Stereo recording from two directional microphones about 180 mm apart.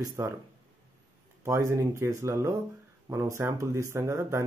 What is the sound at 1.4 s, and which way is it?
Speech, 15° right (ahead or behind).